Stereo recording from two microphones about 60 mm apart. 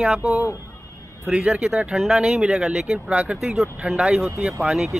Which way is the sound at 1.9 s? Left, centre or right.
Centre.